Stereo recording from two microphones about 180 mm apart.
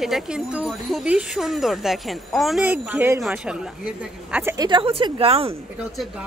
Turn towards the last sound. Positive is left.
turn(degrees=-35)  # may be behind; listen again after turning